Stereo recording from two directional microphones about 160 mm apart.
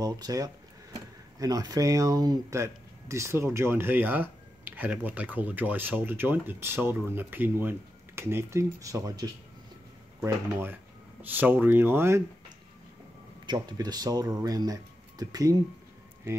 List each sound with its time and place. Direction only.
0.0 s speech: 25° right (ahead or behind)
13.5 s speech: 25° right (ahead or behind)